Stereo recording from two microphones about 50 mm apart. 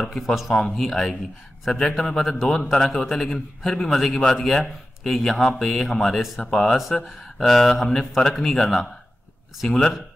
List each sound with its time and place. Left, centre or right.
0.0 s a man's voice: centre
7.8 s a man's voice: centre
9.7 s speech: centre